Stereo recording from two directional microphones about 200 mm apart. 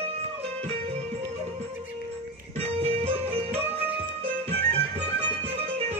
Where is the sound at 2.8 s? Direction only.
30° right (ahead or behind).